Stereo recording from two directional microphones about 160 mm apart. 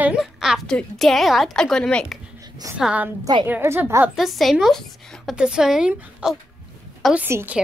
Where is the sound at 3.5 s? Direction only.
15° right (ahead or behind).